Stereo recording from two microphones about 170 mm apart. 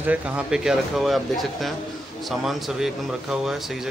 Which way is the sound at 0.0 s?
10° right (ahead or behind).